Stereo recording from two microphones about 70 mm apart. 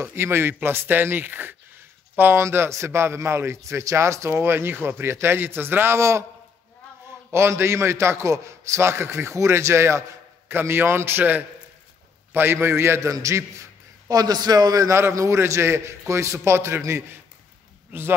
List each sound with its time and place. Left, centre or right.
0.0 s a man's voice: right
4.4 s a man's voice: right
7.2 s a man's voice: right
14.0 s a man's voice: right
14.9 s a man's voice: right